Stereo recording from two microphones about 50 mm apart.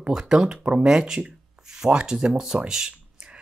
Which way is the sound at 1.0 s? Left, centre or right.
Centre.